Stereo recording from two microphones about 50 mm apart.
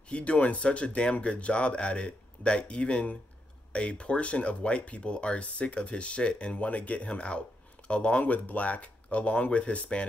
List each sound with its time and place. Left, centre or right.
0.1 s speech: left
8.2 s speech: left